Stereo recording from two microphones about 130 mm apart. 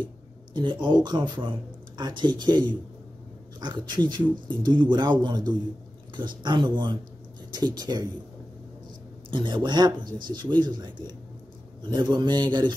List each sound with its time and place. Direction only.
0.0 s a man's voice: 35° right (ahead or behind)
9.3 s a man's voice: 35° right (ahead or behind)